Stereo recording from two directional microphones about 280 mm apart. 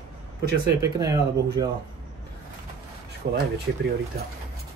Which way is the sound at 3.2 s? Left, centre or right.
Right.